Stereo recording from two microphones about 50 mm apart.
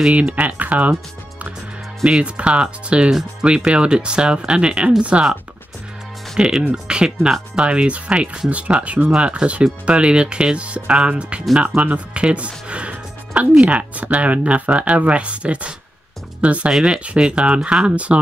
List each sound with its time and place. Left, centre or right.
0.3 s speech: right
2.0 s speech: right
6.3 s speech: centre; by 18.2 s right